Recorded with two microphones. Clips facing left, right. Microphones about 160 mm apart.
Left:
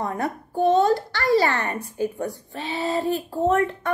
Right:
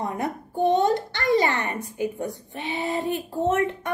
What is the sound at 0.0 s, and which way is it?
A woman's voice, 20° right (ahead or behind).